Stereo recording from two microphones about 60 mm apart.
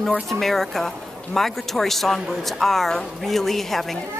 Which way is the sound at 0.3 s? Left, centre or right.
Centre.